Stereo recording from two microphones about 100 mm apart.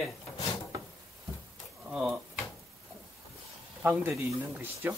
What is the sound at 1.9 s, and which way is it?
Drawer open or close, 5° right (ahead or behind).